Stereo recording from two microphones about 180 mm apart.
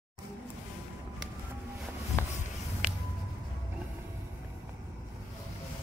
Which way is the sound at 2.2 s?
15° left (ahead or behind).